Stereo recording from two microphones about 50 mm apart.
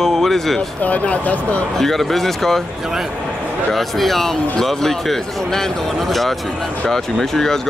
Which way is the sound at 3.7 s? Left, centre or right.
Centre.